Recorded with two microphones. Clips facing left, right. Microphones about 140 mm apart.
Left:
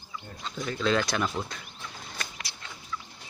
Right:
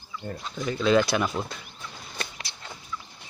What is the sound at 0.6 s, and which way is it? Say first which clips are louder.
Speech: right 5 dB; 5° right (ahead or behind).